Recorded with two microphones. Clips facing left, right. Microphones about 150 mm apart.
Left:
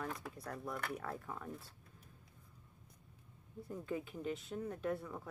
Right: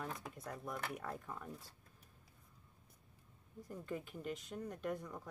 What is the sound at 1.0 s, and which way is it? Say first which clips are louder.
Speech: left 1 dB; centre (ahead or behind).